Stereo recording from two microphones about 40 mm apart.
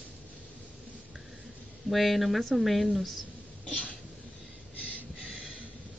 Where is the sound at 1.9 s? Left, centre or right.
Centre.